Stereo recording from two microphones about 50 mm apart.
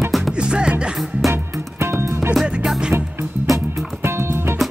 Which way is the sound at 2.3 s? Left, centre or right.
Centre.